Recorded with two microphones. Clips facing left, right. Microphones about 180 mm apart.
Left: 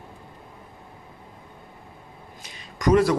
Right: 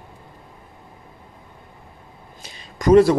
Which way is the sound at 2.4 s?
30° right (ahead or behind).